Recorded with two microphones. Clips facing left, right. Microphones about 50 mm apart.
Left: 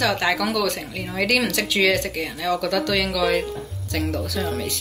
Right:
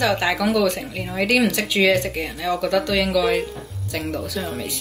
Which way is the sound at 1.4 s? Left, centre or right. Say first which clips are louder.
Right 2 dB; centre.